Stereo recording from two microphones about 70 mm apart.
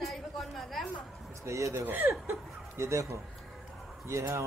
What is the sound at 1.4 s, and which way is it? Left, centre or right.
Speech, right.